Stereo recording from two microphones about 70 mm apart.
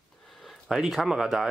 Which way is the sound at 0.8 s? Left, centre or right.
Centre.